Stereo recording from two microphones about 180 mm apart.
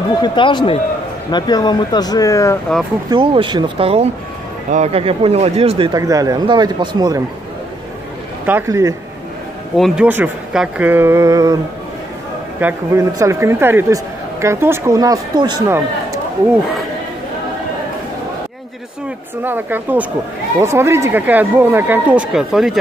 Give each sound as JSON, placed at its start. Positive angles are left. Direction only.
{"t": 0.2, "sound": "speech", "side_deg": 25}
{"t": 3.1, "sound": "speech", "side_deg": -25}
{"t": 5.9, "sound": "speech", "side_deg": -20}
{"t": 8.5, "sound": "a woman's voice", "side_deg": -15}
{"t": 9.8, "sound": "a woman's voice", "side_deg": 0}
{"t": 12.5, "sound": "a woman's voice", "side_deg": -15}
{"t": 19.4, "sound": "a woman's voice", "side_deg": -10}